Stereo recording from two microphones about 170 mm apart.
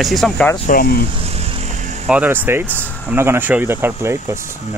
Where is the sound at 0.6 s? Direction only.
60° left (ahead or behind).